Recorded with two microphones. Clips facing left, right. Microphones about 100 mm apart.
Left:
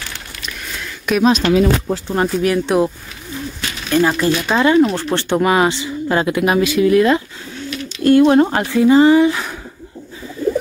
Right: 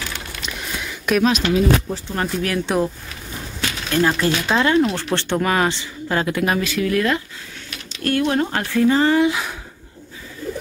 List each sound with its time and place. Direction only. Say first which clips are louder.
1.1 s speech: left 1 dB; 5° right (ahead or behind)
1.5 s speech: left 4 dB; 90° left
2.2 s speech: left 5 dB; 5° left (ahead or behind)
3.9 s speech: left 4 dB; 5° left (ahead or behind); by 8.5 s 30° left (ahead or behind)
8.5 s speech: left 5 dB; 15° left (ahead or behind)
9.2 s a sound: left 3 dB; centre (ahead or behind)